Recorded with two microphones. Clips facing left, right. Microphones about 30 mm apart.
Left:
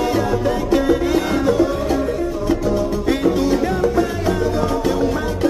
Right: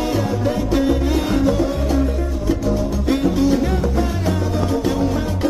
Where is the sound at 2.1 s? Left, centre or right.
Centre.